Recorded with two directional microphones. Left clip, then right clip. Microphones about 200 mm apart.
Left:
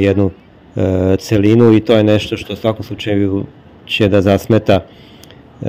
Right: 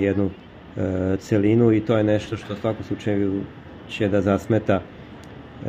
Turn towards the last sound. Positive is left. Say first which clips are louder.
# left 9 dB
turn(degrees=45)  # may be behind; listen again after turning